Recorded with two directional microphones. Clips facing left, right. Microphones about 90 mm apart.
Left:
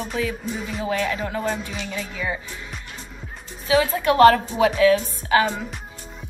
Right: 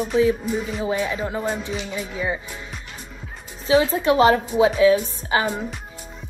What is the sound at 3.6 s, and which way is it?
A woman's voice, 25° right (ahead or behind).